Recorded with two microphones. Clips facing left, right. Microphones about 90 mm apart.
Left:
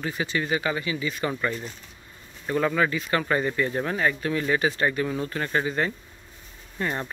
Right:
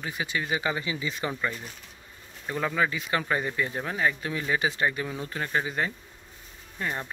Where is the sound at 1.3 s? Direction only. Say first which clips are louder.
Left 3 dB; 5° right (ahead or behind).